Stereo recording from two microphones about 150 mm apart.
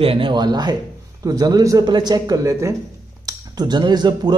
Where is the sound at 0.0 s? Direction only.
35° right (ahead or behind).